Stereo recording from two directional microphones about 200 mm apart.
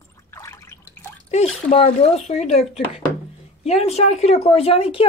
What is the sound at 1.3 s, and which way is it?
A woman's voice, 30° left (ahead or behind).